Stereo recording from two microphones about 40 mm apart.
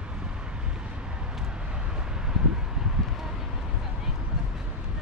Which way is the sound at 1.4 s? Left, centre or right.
Centre.